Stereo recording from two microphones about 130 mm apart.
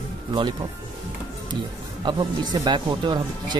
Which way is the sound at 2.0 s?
35° right (ahead or behind).